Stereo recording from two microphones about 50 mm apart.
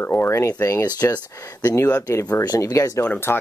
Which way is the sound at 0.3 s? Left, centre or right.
Left.